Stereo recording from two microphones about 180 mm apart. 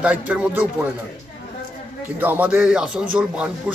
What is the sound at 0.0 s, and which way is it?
Speech, 10° right (ahead or behind).